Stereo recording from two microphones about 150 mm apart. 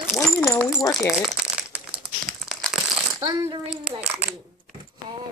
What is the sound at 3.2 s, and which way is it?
Speech, 30° right (ahead or behind).